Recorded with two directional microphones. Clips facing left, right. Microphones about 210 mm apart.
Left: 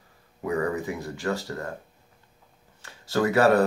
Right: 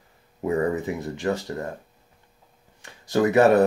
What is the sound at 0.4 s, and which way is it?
Speech, 25° right (ahead or behind).